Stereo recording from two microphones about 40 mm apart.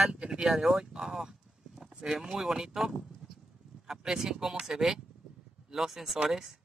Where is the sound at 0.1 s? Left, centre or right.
Centre.